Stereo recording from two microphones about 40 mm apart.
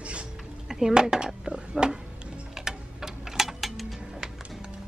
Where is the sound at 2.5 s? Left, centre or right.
Centre.